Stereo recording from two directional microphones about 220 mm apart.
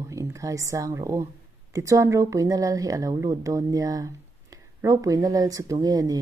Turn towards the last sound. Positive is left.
turn(degrees=-15)  # may be behind; listen again after turning